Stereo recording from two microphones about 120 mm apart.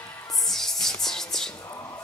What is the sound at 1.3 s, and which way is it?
Whispering, 5° left (ahead or behind).